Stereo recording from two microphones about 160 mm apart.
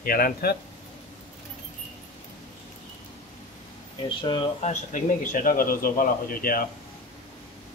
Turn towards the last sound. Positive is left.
turn(degrees=65)  # may be behind; listen again after turning